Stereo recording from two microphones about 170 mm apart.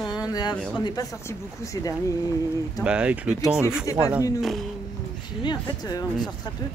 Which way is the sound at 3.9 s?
20° left (ahead or behind).